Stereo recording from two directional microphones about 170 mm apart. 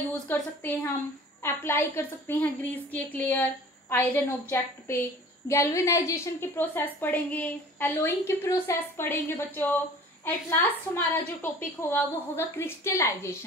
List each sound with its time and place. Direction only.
0.3 s a woman's voice: 10° left (ahead or behind)